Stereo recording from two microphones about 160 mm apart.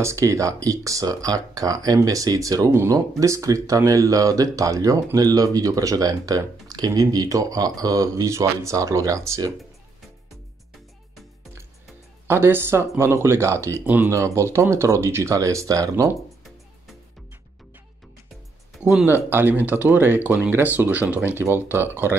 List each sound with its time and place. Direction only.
0.0 s speech: 20° right (ahead or behind)
12.3 s speech: 15° right (ahead or behind)
18.9 s speech: 10° right (ahead or behind)